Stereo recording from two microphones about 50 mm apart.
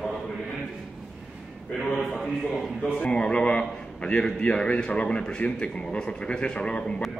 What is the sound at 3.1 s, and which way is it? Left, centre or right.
A man's voice, centre.